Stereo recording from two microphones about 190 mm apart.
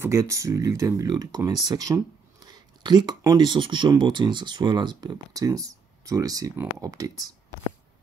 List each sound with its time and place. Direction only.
0.0 s speech: 15° right (ahead or behind)